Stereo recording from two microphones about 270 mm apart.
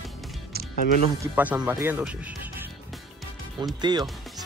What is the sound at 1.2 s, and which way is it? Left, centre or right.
Speech, centre.